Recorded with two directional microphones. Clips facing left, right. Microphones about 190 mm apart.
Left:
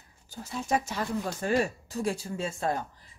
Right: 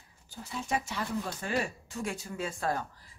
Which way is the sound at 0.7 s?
45° left (ahead or behind).